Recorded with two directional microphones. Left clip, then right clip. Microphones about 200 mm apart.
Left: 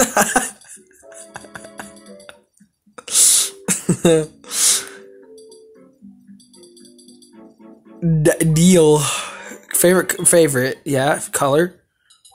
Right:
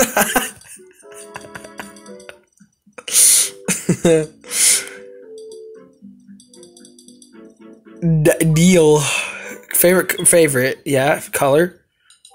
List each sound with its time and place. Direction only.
0.0 s cough: 10° left (ahead or behind)
1.0 s music: 10° left (ahead or behind)
3.0 s a sound: 10° left (ahead or behind)
8.0 s speech: 10° left (ahead or behind)